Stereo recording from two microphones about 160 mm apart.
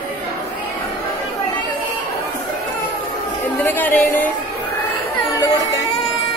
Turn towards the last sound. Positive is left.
turn(degrees=20)  # may be behind; listen again after turning